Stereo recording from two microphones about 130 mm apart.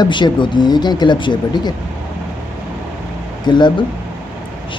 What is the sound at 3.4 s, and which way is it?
Speech, 35° left (ahead or behind).